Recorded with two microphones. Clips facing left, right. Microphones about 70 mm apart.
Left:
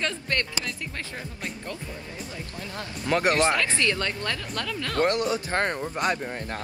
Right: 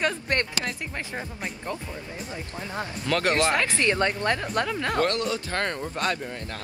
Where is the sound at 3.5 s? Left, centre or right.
Right.